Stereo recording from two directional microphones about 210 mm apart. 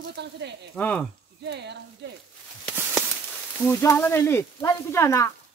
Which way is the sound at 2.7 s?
10° right (ahead or behind).